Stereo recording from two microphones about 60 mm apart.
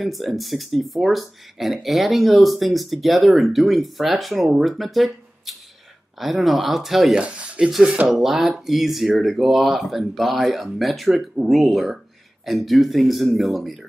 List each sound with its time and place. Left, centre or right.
0.0 s speech: centre
7.2 s speech: centre
8.1 s speech: centre